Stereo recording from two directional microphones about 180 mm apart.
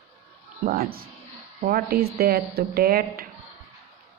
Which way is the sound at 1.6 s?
55° right (ahead or behind).